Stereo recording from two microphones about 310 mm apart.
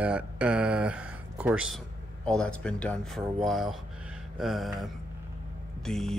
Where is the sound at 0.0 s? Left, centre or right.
Centre.